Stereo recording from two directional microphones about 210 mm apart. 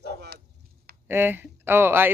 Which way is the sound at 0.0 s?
50° right (ahead or behind).